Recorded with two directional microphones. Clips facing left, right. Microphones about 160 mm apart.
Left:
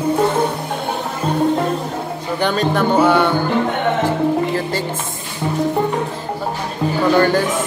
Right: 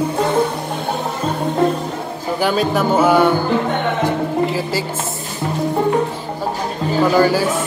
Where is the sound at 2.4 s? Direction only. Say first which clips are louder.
Even; 5° right (ahead or behind).